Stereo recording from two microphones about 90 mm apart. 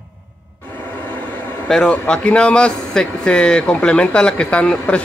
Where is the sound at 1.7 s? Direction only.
10° left (ahead or behind).